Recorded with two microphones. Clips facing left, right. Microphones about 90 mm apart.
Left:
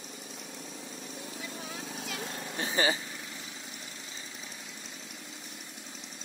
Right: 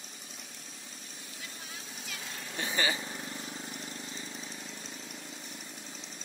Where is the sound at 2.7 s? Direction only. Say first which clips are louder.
Left 3 dB; 30° left (ahead or behind).